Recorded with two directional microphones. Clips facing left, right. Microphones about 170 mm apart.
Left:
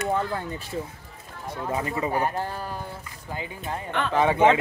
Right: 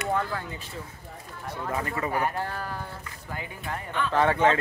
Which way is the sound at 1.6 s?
20° left (ahead or behind).